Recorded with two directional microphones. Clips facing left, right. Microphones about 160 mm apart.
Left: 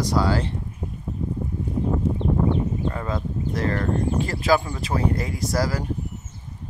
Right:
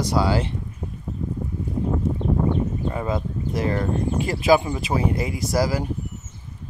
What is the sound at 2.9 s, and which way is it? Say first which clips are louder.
Speech: right 2 dB; 15° right (ahead or behind).